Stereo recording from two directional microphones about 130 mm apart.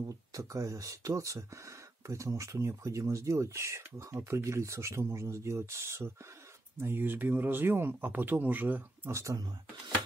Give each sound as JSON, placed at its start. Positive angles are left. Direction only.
{"t": 0.3, "sound": "speech", "side_deg": -25}